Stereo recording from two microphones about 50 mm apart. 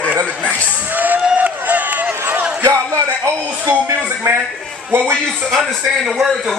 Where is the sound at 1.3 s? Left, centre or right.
Right.